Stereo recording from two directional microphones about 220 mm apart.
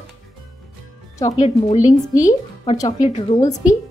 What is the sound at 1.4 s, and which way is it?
Speech, 30° left (ahead or behind).